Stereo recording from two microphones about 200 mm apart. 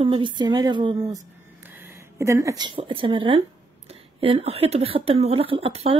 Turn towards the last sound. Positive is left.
turn(degrees=-30)  # may be behind; listen again after turning